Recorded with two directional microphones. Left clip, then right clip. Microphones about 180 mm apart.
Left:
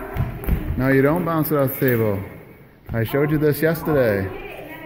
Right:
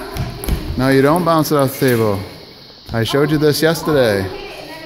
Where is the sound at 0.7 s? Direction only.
15° right (ahead or behind).